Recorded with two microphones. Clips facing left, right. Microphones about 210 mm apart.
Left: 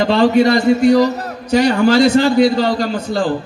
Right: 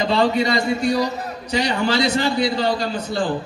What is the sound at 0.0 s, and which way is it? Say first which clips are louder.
Speech: left 7 dB; 65° left (ahead or behind).